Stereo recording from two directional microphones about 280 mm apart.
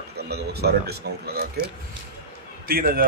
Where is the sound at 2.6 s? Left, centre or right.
Right.